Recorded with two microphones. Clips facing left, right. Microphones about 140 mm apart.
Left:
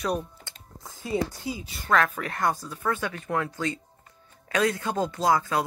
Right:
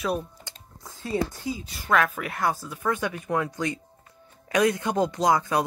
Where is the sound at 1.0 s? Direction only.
10° left (ahead or behind).